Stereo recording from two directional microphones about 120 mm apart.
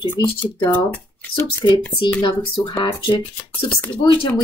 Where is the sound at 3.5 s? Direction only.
10° left (ahead or behind).